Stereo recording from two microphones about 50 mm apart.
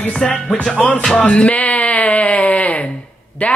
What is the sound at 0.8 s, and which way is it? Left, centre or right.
Speech, left.